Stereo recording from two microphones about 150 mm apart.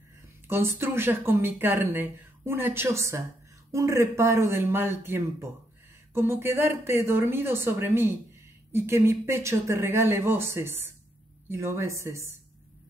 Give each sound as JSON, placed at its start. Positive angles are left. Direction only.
{"t": 0.5, "sound": "speech", "side_deg": -15}